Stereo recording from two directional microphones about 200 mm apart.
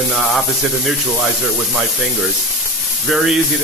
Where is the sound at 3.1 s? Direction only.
5° right (ahead or behind).